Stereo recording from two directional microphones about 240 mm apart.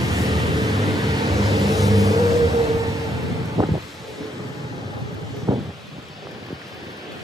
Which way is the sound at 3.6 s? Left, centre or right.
Centre.